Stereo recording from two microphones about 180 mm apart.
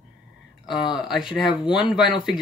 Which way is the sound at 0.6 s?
Centre (ahead or behind).